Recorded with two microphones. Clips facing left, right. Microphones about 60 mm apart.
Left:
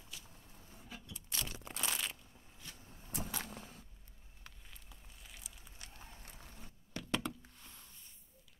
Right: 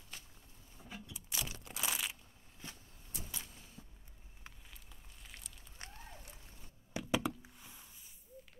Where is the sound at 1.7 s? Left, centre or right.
Centre.